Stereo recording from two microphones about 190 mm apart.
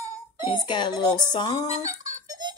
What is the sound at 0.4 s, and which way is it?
Speech, 25° left (ahead or behind).